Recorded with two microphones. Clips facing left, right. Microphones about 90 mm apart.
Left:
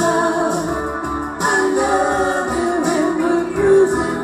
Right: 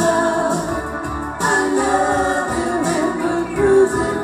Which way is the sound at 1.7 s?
15° left (ahead or behind).